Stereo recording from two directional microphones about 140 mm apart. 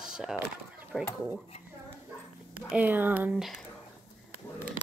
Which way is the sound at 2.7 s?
10° right (ahead or behind).